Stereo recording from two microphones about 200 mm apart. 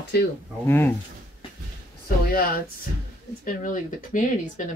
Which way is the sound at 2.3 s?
45° left (ahead or behind).